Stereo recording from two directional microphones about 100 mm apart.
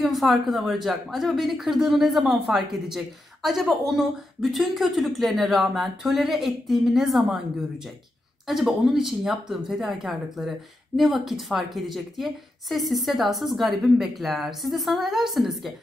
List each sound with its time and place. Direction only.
0.0 s a woman's voice: centre (ahead or behind)
8.5 s a woman's voice: 5° right (ahead or behind)